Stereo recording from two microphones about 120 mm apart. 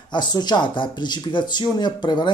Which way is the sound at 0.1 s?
35° left (ahead or behind).